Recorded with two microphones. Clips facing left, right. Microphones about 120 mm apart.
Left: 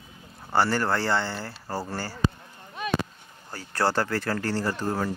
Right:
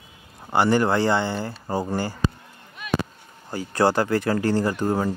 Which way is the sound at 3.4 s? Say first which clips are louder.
Right 6 dB; 15° right (ahead or behind).